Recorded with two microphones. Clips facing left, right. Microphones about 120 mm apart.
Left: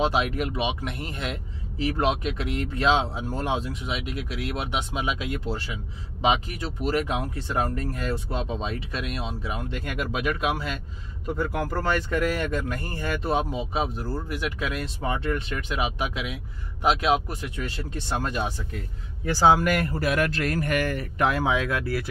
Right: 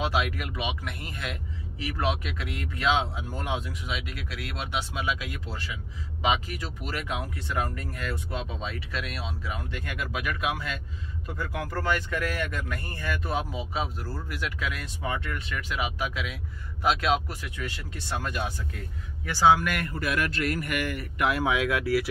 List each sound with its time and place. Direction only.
0.0 s speech: 30° left (ahead or behind)
11.5 s speech: 40° left (ahead or behind)